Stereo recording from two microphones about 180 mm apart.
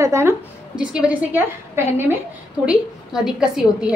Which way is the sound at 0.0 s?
15° right (ahead or behind).